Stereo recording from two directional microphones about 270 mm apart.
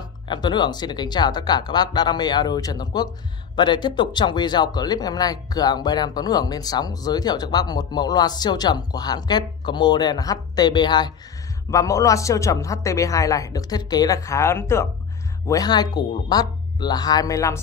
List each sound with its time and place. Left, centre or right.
0.3 s speech: centre